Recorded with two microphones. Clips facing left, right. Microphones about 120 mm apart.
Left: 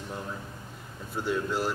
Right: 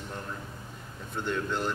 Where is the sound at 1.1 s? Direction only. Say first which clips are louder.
Left 2 dB; 5° left (ahead or behind).